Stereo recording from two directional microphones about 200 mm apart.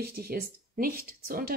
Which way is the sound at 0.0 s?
50° right (ahead or behind).